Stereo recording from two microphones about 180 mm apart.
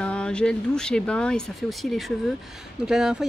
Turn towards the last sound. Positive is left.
turn(degrees=-5)  # may be behind; listen again after turning